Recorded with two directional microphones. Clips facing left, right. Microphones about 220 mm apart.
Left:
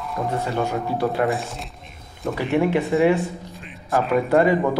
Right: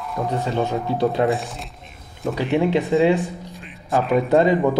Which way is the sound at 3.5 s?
Centre (ahead or behind).